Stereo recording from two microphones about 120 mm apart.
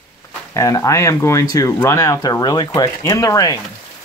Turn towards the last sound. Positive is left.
turn(degrees=30)  # may be behind; listen again after turning